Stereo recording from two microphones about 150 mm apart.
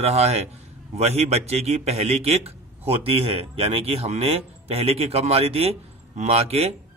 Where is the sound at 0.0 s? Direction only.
45° right (ahead or behind).